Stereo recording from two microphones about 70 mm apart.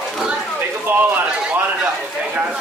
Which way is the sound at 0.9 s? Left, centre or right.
Right.